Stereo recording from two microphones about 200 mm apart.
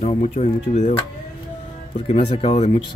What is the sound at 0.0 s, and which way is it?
Speech, 35° left (ahead or behind).